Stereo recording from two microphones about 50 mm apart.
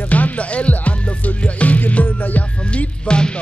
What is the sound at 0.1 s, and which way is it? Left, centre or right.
Music, left.